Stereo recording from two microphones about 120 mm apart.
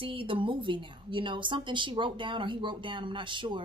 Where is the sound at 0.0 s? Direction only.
45° right (ahead or behind).